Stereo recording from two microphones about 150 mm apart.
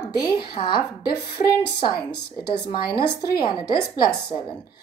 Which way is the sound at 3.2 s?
30° left (ahead or behind).